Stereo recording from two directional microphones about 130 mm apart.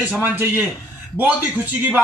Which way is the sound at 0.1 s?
15° right (ahead or behind).